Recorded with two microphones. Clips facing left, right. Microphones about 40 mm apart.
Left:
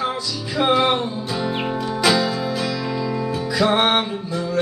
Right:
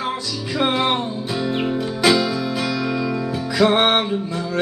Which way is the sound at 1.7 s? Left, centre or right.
Centre.